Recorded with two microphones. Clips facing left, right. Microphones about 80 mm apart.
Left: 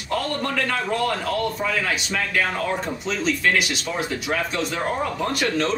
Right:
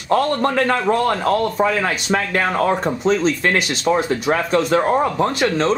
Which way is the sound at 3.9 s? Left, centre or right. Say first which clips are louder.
Right 8 dB; right.